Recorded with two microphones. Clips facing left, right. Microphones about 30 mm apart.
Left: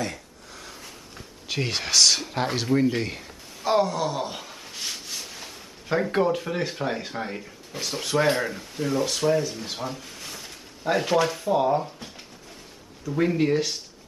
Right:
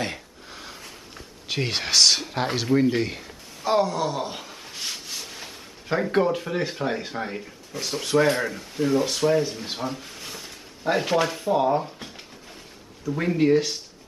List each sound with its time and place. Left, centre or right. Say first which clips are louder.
0.0 s a sound: right 1 dB; right
0.7 s speech: right 1 dB; centre
13.1 s speech: right 2 dB; centre